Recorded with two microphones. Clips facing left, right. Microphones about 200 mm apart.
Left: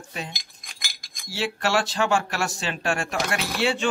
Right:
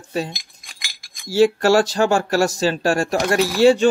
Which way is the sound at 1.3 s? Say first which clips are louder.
Right 11 dB; 45° right (ahead or behind).